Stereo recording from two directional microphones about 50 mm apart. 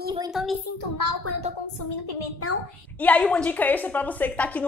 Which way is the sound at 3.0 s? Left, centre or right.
Left.